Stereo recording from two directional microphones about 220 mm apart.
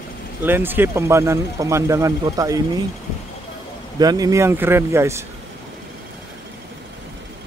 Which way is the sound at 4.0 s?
15° right (ahead or behind).